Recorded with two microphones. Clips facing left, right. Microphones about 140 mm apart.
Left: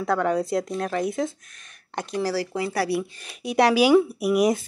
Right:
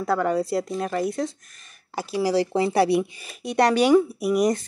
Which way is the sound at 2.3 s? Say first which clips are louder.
Right 5 dB; 25° right (ahead or behind).